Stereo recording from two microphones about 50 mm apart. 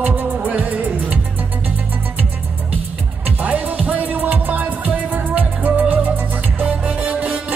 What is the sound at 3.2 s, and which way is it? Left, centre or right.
Music, right.